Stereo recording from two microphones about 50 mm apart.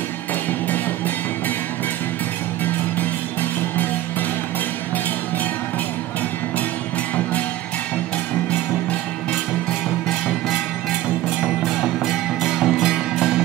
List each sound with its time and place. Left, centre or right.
0.5 s music: left
11.6 s music: centre